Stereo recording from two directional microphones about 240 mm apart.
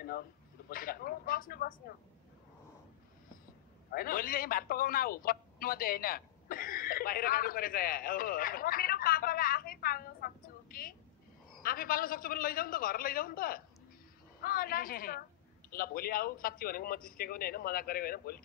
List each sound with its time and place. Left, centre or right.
0.7 s a man's voice: left
3.9 s a man's voice: left